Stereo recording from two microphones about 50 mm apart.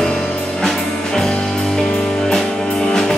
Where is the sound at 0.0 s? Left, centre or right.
Centre.